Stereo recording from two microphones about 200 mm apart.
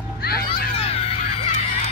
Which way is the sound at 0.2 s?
50° left (ahead or behind).